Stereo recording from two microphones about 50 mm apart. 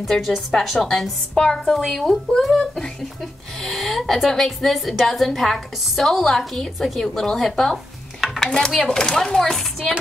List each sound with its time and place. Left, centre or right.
0.1 s a woman's voice: centre